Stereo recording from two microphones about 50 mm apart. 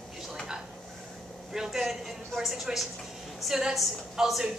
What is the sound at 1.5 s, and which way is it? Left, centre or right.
A woman's voice, centre.